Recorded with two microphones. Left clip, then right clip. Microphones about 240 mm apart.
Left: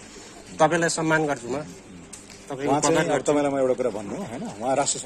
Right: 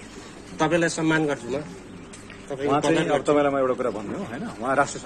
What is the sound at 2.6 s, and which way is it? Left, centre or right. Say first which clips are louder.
A man's voice: even; left.